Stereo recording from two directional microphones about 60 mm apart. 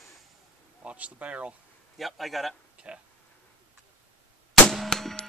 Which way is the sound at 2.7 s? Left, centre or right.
Right.